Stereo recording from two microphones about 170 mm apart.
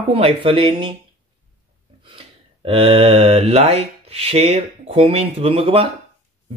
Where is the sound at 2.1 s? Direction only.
30° right (ahead or behind).